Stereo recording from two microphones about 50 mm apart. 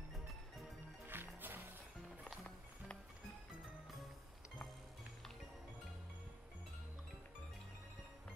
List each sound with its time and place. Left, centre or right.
1.0 s music: right